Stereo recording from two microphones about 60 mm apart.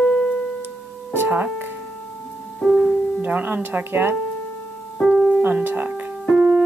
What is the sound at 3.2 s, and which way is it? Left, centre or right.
Speech, right.